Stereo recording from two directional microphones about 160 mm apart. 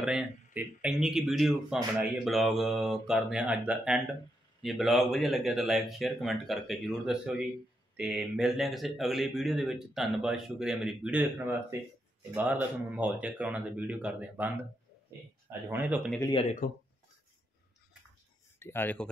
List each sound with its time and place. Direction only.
0.0 s speech: 5° right (ahead or behind)
15.7 s speech: 10° right (ahead or behind)
16.2 s speech: 25° left (ahead or behind)
18.6 s speech: 15° left (ahead or behind)